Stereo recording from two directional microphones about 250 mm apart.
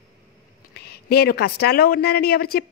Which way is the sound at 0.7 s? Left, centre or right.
Left.